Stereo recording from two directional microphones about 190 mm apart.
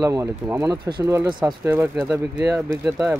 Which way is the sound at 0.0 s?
15° right (ahead or behind).